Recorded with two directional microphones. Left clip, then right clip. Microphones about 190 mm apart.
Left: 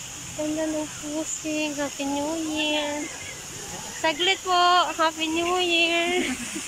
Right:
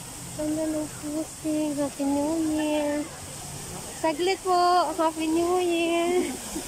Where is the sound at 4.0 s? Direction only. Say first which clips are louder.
Left 2 dB; 20° right (ahead or behind).